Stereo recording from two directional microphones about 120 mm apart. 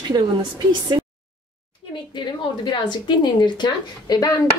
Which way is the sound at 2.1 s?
40° left (ahead or behind).